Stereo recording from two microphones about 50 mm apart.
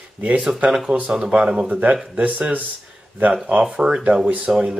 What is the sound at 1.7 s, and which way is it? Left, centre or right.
Speech, right.